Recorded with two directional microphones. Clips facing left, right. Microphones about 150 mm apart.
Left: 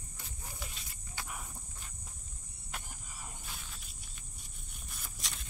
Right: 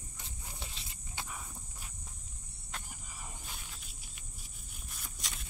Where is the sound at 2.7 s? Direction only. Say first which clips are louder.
Even; centre (ahead or behind).